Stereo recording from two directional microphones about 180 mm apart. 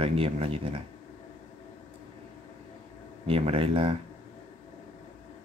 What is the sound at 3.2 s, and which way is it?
Speech, 35° right (ahead or behind).